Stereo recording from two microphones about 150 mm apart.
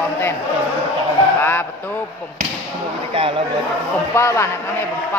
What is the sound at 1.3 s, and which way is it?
Speech, 15° left (ahead or behind).